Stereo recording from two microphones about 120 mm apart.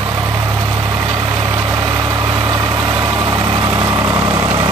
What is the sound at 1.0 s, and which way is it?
Vehicle, 40° right (ahead or behind).